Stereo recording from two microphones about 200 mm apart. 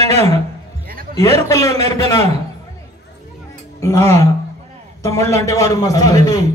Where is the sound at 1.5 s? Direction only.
15° left (ahead or behind).